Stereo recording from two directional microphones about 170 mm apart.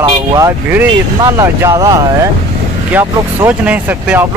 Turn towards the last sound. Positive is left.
turn(degrees=-10)  # may be behind; listen again after turning